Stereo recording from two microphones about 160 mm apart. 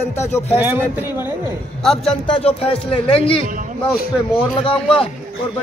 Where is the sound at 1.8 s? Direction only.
Centre (ahead or behind).